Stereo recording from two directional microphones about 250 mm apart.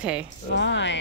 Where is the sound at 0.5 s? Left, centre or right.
Left.